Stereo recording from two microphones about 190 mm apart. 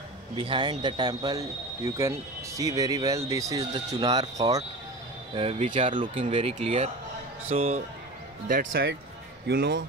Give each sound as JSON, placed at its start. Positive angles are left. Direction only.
{"t": 0.4, "sound": "speech", "side_deg": -25}
{"t": 5.3, "sound": "speech", "side_deg": -30}
{"t": 8.5, "sound": "speech", "side_deg": -50}